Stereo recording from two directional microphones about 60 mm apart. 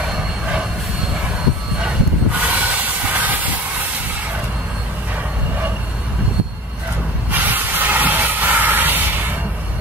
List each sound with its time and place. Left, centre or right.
2.4 s train: right
7.2 s vehicle: right